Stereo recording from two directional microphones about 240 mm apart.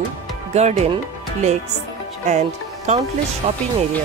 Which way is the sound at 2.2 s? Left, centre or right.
Right.